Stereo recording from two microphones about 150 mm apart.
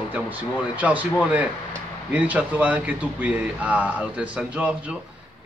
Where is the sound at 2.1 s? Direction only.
10° right (ahead or behind).